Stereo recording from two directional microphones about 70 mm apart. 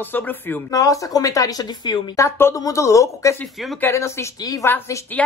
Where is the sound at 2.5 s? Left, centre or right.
Left.